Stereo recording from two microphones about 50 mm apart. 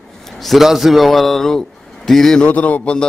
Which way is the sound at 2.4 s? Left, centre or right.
Left.